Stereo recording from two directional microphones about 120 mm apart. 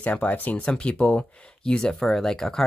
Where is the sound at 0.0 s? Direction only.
10° left (ahead or behind).